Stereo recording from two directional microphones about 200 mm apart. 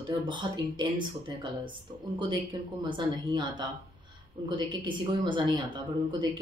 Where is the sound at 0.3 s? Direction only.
25° right (ahead or behind).